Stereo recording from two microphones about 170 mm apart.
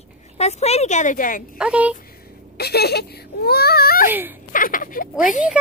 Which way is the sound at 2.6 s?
70° left (ahead or behind).